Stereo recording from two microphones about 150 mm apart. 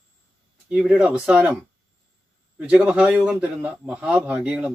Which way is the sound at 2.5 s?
10° right (ahead or behind).